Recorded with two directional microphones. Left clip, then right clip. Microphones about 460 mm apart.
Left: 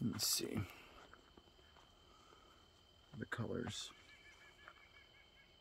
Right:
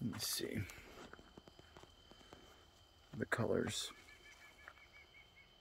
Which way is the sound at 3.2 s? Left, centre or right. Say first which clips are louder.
Right 7 dB; centre.